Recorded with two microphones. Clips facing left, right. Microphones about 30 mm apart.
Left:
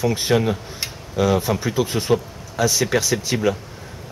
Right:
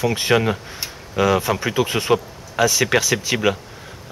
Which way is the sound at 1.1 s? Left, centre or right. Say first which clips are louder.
Right 1 dB; right.